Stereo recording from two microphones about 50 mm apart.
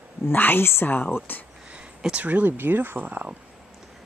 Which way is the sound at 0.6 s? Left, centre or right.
Left.